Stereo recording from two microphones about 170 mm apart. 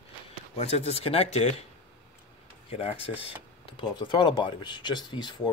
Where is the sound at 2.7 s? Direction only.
35° left (ahead or behind).